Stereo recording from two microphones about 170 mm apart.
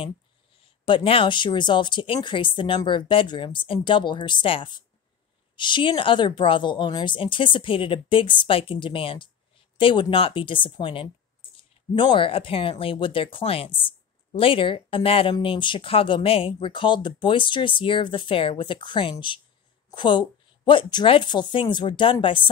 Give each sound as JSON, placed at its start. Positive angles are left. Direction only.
{"t": 0.8, "sound": "speech", "side_deg": 30}